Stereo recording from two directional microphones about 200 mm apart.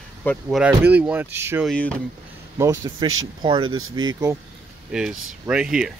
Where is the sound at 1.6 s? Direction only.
5° left (ahead or behind).